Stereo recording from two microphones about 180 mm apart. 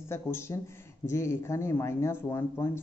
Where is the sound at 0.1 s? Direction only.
15° left (ahead or behind).